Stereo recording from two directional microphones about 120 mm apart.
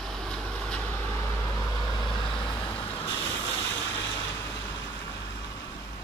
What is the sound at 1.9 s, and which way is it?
Vehicle, 40° left (ahead or behind).